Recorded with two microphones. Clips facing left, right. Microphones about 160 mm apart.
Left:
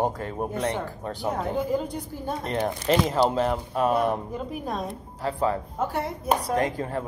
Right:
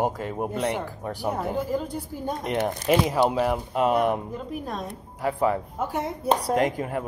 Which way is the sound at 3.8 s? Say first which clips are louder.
Right 1 dB; 20° right (ahead or behind).